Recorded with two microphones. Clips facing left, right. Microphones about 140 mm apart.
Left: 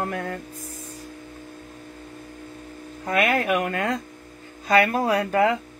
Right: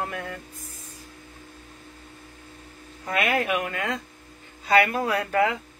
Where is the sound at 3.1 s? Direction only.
45° left (ahead or behind).